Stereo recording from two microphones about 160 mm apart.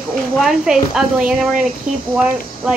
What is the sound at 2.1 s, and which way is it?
Speech, 5° right (ahead or behind).